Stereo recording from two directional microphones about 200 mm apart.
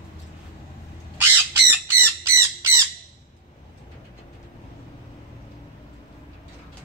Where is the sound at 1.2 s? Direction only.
10° right (ahead or behind).